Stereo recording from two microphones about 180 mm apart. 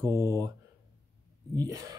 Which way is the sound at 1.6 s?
20° right (ahead or behind).